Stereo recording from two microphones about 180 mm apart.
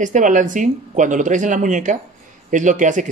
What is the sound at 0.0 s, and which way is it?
Speech, 45° right (ahead or behind).